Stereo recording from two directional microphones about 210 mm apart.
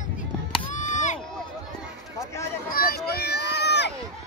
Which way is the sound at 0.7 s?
35° left (ahead or behind).